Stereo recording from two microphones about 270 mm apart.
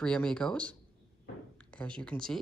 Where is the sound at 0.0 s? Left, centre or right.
Centre.